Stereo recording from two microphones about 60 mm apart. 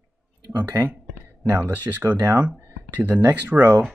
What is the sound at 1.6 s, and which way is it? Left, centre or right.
Speech, right.